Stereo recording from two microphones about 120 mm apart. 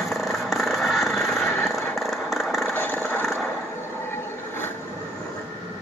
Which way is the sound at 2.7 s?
20° left (ahead or behind).